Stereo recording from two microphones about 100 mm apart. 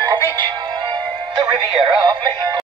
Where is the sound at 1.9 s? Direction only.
55° right (ahead or behind).